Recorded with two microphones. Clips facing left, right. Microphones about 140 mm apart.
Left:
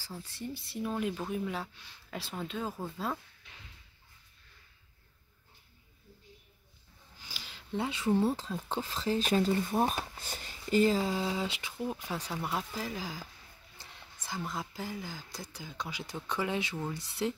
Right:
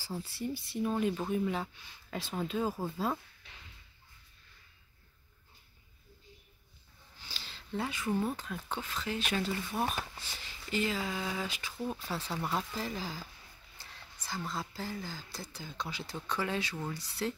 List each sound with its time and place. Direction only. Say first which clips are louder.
0.0 s speech: right 4 dB; 10° right (ahead or behind)
7.2 s a sound: left 2 dB; 10° left (ahead or behind)
8.4 s speech: left 3 dB; 30° left (ahead or behind)
12.0 s speech: even; 15° left (ahead or behind)